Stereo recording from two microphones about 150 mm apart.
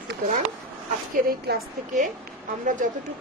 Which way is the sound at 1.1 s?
70° right (ahead or behind).